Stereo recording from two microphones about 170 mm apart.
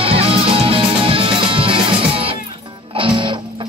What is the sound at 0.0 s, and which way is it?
Music, 35° right (ahead or behind).